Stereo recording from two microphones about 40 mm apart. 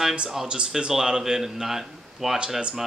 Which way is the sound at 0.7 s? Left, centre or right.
Right.